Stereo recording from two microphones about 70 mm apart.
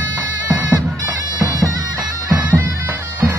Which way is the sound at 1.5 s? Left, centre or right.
Right.